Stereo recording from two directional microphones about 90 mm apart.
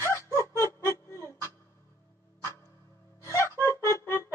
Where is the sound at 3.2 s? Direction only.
30° left (ahead or behind).